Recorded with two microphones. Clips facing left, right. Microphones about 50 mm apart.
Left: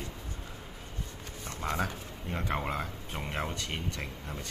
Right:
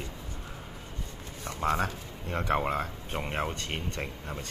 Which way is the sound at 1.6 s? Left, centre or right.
Right.